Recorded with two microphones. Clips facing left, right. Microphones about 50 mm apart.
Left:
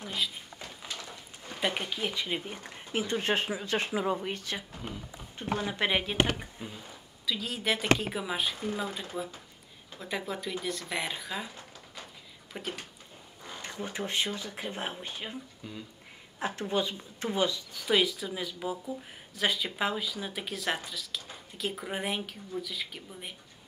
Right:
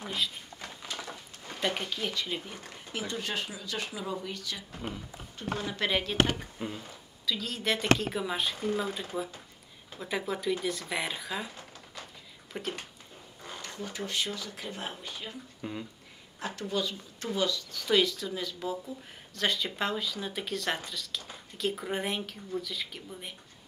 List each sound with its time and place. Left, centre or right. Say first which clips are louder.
1.5 s speech: even; centre; by 4.6 s left
5.6 s speech: left 1 dB; left; by 11.5 s centre
12.5 s speech: right 2 dB; centre
13.6 s speech: left 2 dB; left
15.6 s speech: right 9 dB; right
16.3 s speech: left 2 dB; left; by 23.3 s centre